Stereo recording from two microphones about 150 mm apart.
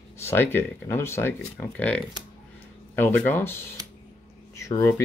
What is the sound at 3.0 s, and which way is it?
Speech, 10° left (ahead or behind).